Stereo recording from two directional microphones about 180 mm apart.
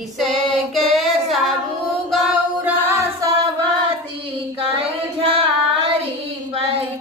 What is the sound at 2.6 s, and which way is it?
Music, 15° right (ahead or behind).